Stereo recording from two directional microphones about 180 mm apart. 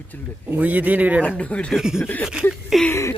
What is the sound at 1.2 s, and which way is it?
A man's voice, 5° left (ahead or behind).